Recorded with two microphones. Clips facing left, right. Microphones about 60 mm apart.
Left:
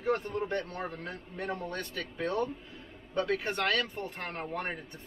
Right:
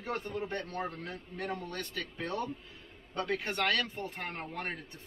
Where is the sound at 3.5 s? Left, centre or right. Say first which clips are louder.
Left 1 dB; left.